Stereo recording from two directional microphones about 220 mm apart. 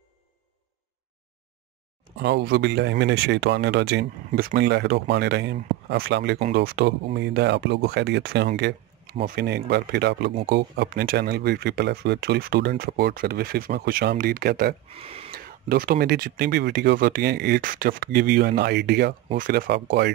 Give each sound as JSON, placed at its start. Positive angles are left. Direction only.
{"t": 2.1, "sound": "speech", "side_deg": -50}
{"t": 4.3, "sound": "speech", "side_deg": -35}
{"t": 4.6, "sound": "speech", "side_deg": -50}
{"t": 14.9, "sound": "speech", "side_deg": -25}
{"t": 15.3, "sound": "speech", "side_deg": -40}
{"t": 19.3, "sound": "speech", "side_deg": -40}